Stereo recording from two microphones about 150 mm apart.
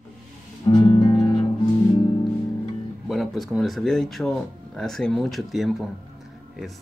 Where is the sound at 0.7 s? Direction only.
30° left (ahead or behind).